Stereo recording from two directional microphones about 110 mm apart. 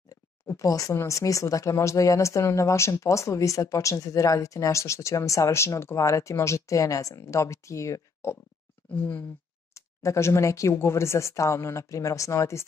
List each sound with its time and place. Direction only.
0.1 s speech: 30° left (ahead or behind)